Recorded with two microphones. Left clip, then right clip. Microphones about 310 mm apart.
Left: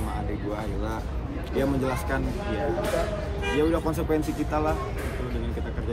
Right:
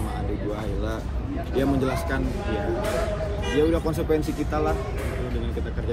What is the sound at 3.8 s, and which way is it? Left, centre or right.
Speech, centre.